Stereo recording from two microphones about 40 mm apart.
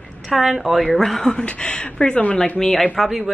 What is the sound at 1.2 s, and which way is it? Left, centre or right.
Speech, centre.